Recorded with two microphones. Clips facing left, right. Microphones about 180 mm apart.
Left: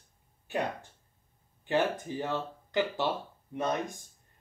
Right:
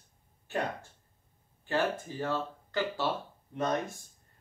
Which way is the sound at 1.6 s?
20° left (ahead or behind).